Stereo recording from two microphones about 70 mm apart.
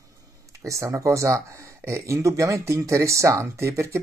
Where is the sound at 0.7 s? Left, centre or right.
Right.